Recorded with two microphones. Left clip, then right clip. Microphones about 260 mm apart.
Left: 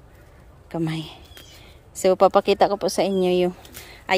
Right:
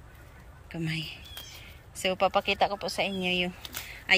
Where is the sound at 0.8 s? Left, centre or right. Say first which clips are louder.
Left 4 dB; centre.